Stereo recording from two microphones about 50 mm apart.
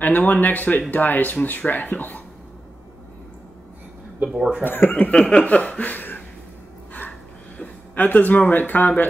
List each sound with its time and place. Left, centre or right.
0.0 s speech: left
4.2 s speech: right
4.6 s speech: left
5.1 s a sound: centre
5.4 s speech: left
6.9 s a sound: left